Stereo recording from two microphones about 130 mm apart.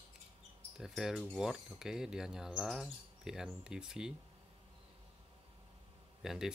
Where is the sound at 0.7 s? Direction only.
5° right (ahead or behind).